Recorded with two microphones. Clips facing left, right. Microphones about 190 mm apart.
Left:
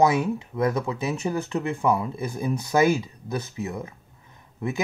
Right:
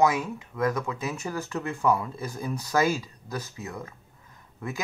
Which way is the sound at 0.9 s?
20° left (ahead or behind).